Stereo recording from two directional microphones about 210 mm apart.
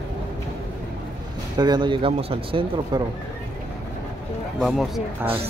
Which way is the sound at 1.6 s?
20° right (ahead or behind).